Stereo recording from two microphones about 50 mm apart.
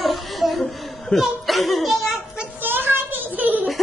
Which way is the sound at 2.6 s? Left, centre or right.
Right.